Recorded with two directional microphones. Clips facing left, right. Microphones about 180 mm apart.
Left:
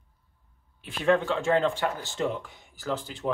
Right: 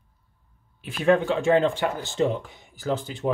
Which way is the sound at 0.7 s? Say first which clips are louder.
Right 3 dB; 10° right (ahead or behind).